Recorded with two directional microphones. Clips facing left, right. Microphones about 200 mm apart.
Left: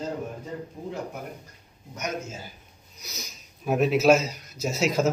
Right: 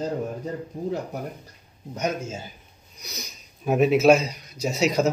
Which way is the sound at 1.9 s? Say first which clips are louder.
Right 5 dB; 30° right (ahead or behind).